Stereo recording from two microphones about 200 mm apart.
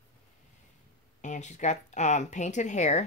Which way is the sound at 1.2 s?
35° left (ahead or behind).